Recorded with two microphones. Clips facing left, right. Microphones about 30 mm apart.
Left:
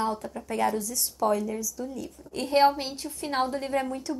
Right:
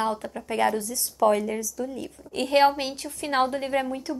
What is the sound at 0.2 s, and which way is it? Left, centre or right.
A woman's voice, right.